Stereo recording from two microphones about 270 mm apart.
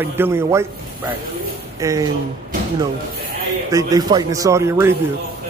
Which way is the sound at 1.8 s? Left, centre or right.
Centre.